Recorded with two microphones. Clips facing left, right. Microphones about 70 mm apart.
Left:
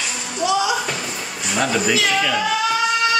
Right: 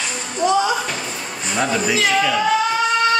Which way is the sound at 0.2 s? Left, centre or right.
Centre.